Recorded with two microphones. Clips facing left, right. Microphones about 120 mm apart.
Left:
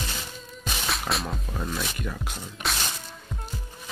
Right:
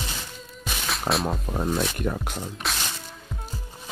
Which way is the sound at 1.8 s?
50° right (ahead or behind).